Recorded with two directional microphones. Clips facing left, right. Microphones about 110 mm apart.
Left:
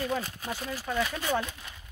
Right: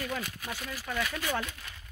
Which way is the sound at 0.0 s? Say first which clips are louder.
Left 4 dB; 30° left (ahead or behind).